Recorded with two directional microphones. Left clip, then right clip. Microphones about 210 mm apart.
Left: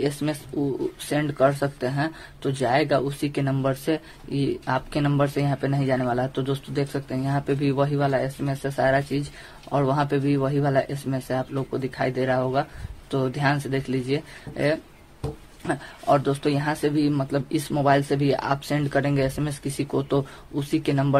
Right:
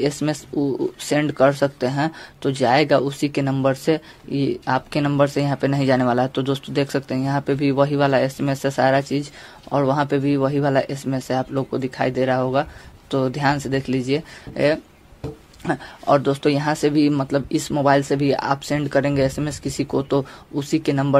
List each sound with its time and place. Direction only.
0.0 s speech: 20° right (ahead or behind)